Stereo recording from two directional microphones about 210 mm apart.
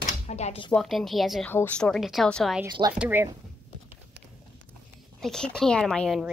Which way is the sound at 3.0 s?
10° right (ahead or behind).